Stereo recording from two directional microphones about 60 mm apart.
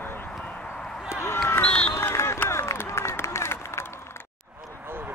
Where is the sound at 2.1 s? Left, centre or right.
Left.